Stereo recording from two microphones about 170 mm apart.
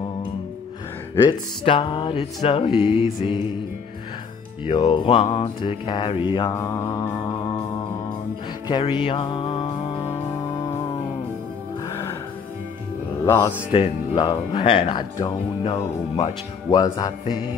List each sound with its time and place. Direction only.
1.7 s music: 30° left (ahead or behind)
4.6 s speech: 30° left (ahead or behind)
6.5 s music: 20° left (ahead or behind)
8.6 s music: 30° left (ahead or behind)
11.9 s music: 15° left (ahead or behind)
13.2 s speech: 20° left (ahead or behind)
13.7 s speech: 30° left (ahead or behind)